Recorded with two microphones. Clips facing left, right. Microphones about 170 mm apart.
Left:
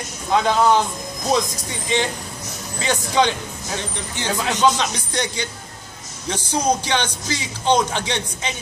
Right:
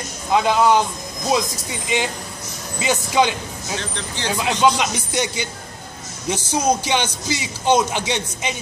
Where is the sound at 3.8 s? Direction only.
15° left (ahead or behind).